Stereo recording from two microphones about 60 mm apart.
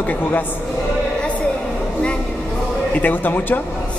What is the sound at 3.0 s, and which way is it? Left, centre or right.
Speech, left.